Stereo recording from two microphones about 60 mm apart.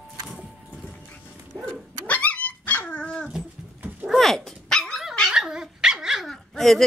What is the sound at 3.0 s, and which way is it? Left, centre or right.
Dog, centre.